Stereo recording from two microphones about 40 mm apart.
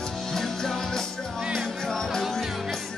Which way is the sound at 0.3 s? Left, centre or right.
Centre.